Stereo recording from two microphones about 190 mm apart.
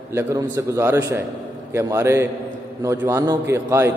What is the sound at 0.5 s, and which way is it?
A man's voice, 15° right (ahead or behind).